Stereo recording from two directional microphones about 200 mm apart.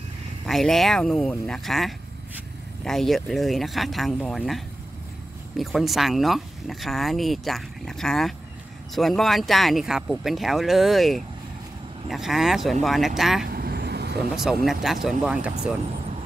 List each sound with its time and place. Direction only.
0.5 s speech: centre (ahead or behind)
13.5 s vehicle: 50° right (ahead or behind)
14.3 s speech: centre (ahead or behind)